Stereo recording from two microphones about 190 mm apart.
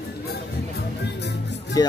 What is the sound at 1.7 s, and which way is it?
Speech, 20° left (ahead or behind).